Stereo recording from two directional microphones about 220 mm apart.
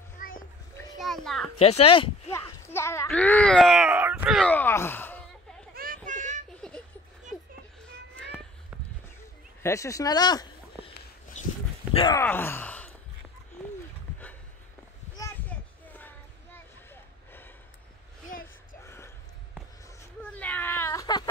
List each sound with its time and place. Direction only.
0.2 s a sound: 40° left (ahead or behind)
0.9 s a child's voice: centre (ahead or behind)
1.6 s speech: 25° left (ahead or behind)
2.7 s speech: 10° left (ahead or behind)
6.0 s a sound: 35° right (ahead or behind)
6.6 s a sound: 5° left (ahead or behind)
9.6 s speech: 15° left (ahead or behind)
11.9 s speech: 20° left (ahead or behind)
12.2 s speech: 10° left (ahead or behind)
15.1 s a sound: 10° left (ahead or behind)
16.9 s gasp: 10° left (ahead or behind)
18.9 s gasp: 10° left (ahead or behind)
20.0 s baby cry: 5° left (ahead or behind)